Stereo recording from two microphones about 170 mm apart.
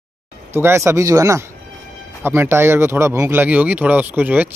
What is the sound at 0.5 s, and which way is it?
Speech, 15° right (ahead or behind).